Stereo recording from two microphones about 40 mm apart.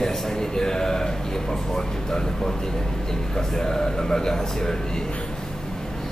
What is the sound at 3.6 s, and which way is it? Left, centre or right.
A man's voice, centre.